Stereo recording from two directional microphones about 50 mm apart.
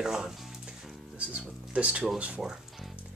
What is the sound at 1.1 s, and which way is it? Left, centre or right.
Speech, right.